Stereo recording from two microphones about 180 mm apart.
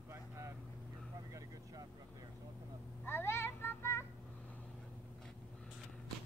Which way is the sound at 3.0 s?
15° left (ahead or behind).